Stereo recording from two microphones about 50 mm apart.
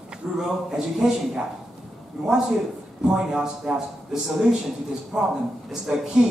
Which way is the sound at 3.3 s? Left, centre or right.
Centre.